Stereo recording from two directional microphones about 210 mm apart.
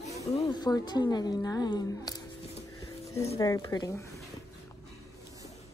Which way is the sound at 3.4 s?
15° left (ahead or behind).